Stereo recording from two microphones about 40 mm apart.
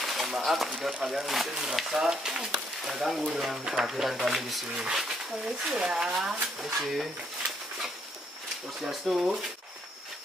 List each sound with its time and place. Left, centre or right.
0.0 s a sound: centre
0.4 s speech: centre
5.4 s speech: right
6.8 s speech: centre
8.8 s speech: centre